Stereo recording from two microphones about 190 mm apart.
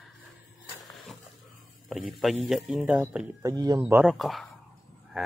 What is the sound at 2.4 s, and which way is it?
Speech, centre (ahead or behind).